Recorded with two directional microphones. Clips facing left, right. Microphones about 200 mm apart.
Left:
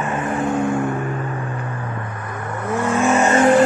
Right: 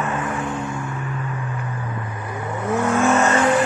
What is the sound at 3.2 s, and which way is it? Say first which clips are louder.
Vehicle: left 4 dB; 30° left (ahead or behind).